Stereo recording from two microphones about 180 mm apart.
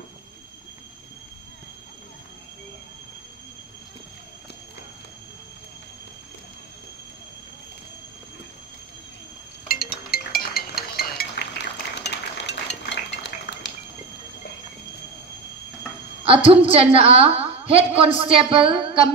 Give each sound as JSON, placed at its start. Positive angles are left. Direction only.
{"t": 9.7, "sound": "music", "side_deg": 55}
{"t": 16.4, "sound": "a woman's voice", "side_deg": -30}